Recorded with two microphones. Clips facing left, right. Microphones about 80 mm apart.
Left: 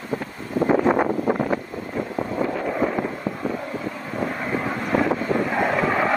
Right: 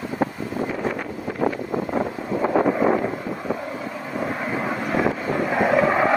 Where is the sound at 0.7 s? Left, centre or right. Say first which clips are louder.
Left 8 dB; left.